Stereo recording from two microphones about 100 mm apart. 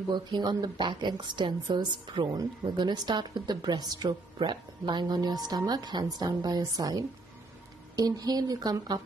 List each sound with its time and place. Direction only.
0.1 s speech: 45° right (ahead or behind)